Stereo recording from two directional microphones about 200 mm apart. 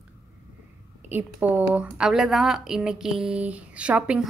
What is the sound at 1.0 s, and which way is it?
A woman's voice, 10° right (ahead or behind).